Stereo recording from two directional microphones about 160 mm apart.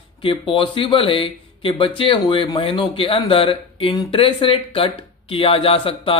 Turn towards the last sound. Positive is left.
turn(degrees=35)  # may be behind; listen again after turning